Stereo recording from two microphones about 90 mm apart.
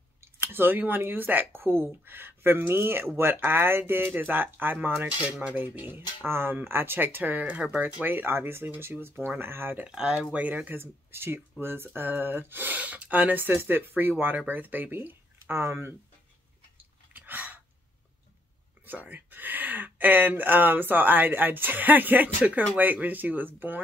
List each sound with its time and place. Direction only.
0.2 s speech: 25° right (ahead or behind)
9.8 s speech: 10° right (ahead or behind); by 15.9 s 25° right (ahead or behind)
17.1 s a sound: 20° right (ahead or behind)
18.9 s speech: 20° right (ahead or behind)